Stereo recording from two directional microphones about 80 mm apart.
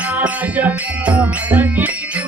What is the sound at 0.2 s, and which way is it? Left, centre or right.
Music, centre.